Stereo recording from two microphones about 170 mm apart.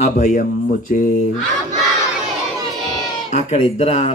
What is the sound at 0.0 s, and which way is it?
Speech, 50° left (ahead or behind).